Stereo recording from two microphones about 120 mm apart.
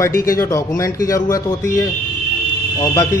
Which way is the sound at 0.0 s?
25° left (ahead or behind).